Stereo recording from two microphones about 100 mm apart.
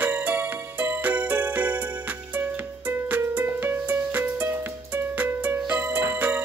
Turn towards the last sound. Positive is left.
turn(degrees=-20)  # may be behind; listen again after turning